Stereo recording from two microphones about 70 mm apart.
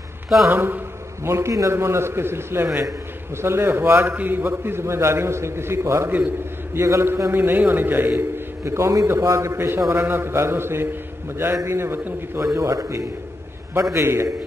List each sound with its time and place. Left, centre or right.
0.5 s a sound: right
1.3 s a man's voice: right
1.7 s a man's voice: right
6.1 s a man's voice: right
6.8 s a man's voice: right
8.2 s a man's voice: right
12.5 s a man's voice: right